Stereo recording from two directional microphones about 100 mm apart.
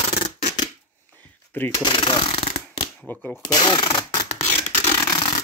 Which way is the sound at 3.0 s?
20° left (ahead or behind).